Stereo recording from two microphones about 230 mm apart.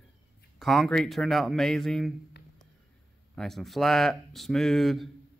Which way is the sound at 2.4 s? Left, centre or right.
Left.